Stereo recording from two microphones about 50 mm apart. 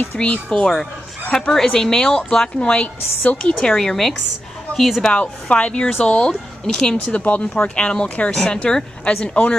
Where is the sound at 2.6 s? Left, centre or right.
Left.